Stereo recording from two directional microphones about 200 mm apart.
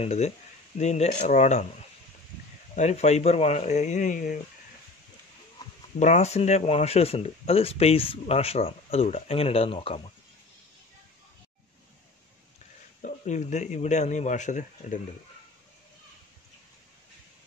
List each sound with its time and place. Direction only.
0.0 s speech: 35° left (ahead or behind)
2.7 s speech: 35° left (ahead or behind)
5.9 s speech: 35° left (ahead or behind)
13.0 s speech: 35° left (ahead or behind)